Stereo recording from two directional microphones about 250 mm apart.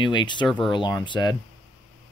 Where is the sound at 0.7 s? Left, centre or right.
Centre.